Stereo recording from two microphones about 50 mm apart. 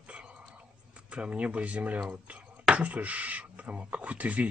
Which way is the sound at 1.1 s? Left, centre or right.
Right.